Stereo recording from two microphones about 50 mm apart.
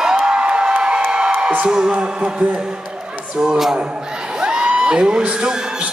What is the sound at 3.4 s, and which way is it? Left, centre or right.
Speech, centre.